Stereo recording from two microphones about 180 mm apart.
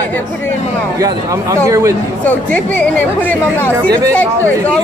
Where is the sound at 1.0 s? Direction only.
20° right (ahead or behind).